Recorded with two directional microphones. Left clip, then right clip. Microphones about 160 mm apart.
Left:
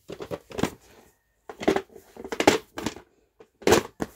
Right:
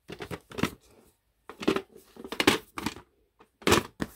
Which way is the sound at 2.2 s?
55° right (ahead or behind).